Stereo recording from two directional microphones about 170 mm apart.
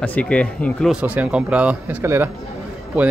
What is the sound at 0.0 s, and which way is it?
Speech, 10° left (ahead or behind).